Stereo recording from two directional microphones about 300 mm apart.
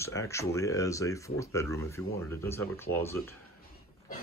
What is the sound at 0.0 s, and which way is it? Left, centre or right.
Speech, centre.